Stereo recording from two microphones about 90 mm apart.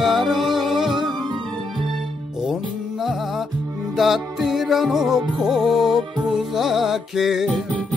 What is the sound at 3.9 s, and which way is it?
Music, centre (ahead or behind).